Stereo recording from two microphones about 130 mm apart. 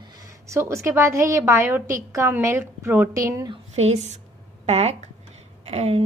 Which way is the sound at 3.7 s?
55° right (ahead or behind).